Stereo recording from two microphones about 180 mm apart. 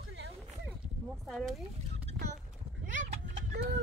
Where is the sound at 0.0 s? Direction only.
75° right (ahead or behind).